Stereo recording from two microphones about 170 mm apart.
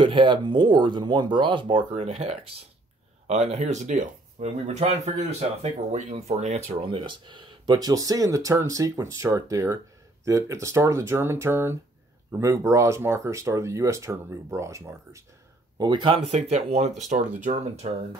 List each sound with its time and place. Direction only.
0.0 s speech: 30° right (ahead or behind)
15.8 s speech: 25° right (ahead or behind)